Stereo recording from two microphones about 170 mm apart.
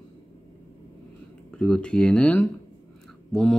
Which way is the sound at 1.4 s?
5° left (ahead or behind).